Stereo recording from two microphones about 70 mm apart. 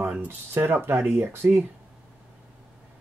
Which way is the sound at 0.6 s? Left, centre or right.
Right.